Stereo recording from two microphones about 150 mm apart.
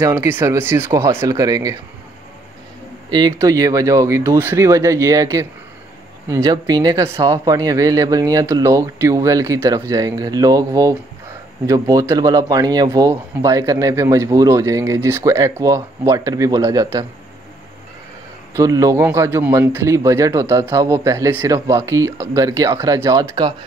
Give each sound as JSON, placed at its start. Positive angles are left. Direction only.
{"t": 0.0, "sound": "speech", "side_deg": -20}
{"t": 3.1, "sound": "speech", "side_deg": -25}
{"t": 18.5, "sound": "speech", "side_deg": -20}